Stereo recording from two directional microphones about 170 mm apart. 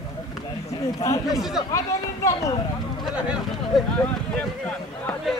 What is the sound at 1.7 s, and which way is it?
Speech, 20° left (ahead or behind).